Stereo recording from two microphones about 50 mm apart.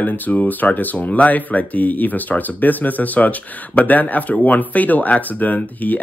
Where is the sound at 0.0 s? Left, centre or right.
Left.